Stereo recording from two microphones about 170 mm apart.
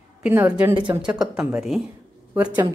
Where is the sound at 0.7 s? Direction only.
25° right (ahead or behind).